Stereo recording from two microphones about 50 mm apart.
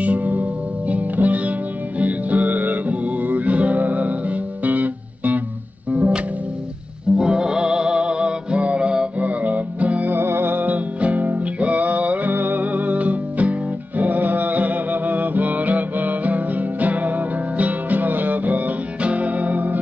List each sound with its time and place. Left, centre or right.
0.0 s music: right
7.2 s music: centre; by 10.1 s right
10.1 s music: right